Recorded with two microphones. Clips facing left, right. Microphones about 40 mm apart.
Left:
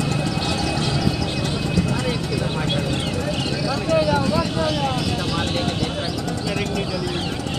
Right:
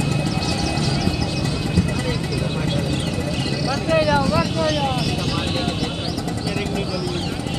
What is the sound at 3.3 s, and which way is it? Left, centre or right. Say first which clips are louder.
Vehicle: even; centre.